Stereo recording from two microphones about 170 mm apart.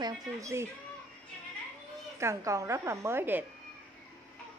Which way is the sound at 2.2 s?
15° right (ahead or behind).